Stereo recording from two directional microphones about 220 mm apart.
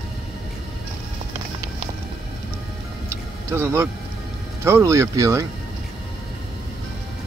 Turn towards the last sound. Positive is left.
turn(degrees=-15)  # may be behind; listen again after turning